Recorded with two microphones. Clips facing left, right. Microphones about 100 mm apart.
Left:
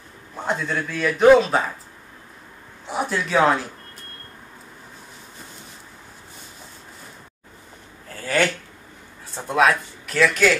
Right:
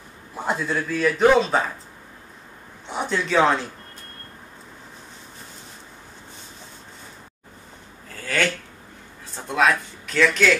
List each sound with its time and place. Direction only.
0.5 s a man's voice: centre (ahead or behind)
2.9 s a man's voice: 5° left (ahead or behind)
8.1 s a sound: centre (ahead or behind)
9.3 s speech: centre (ahead or behind)